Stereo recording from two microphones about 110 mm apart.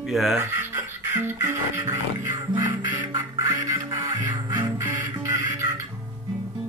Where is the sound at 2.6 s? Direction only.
35° right (ahead or behind).